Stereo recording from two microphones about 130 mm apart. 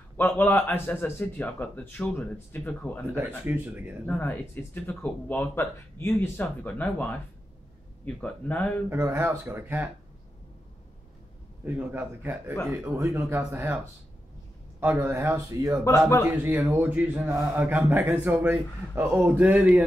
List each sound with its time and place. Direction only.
0.2 s speech: 15° left (ahead or behind)
3.2 s speech: 15° right (ahead or behind)
4.1 s speech: 10° left (ahead or behind)
8.8 s speech: 20° right (ahead or behind)
11.6 s speech: 10° right (ahead or behind)
14.8 s speech: 15° right (ahead or behind)